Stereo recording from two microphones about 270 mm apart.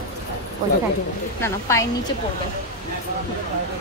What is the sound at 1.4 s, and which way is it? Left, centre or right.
Speech, centre.